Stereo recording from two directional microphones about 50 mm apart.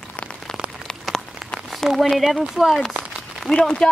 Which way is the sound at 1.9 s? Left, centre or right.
Centre.